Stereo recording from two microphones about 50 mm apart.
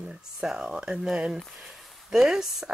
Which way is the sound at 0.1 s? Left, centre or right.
Centre.